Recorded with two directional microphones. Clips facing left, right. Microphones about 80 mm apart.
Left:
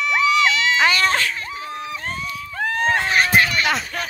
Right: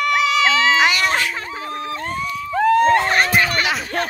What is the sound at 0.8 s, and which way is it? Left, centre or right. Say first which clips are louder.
Speech: right 1 dB; centre.